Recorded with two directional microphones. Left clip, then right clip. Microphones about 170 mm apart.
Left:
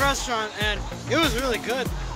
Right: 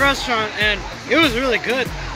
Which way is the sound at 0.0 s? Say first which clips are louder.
Right 6 dB; 15° left (ahead or behind).